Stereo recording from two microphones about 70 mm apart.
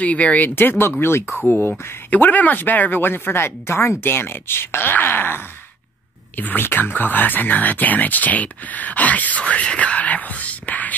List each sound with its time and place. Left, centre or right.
0.0 s speech: left
2.0 s speech: left